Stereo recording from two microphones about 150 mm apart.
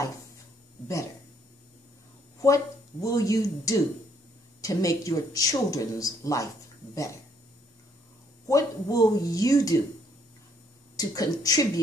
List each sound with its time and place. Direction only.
2.4 s speech: 20° left (ahead or behind)
8.5 s speech: 20° left (ahead or behind)
11.0 s speech: 25° left (ahead or behind)